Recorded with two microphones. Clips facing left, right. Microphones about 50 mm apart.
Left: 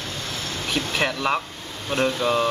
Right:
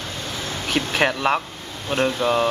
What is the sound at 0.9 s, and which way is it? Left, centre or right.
Speech, centre.